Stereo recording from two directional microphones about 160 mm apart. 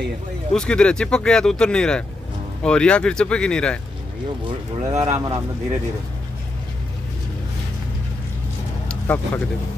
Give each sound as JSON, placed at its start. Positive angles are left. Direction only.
{"t": 0.5, "sound": "speech", "side_deg": 5}
{"t": 4.5, "sound": "speech", "side_deg": -20}
{"t": 8.8, "sound": "vehicle", "side_deg": 10}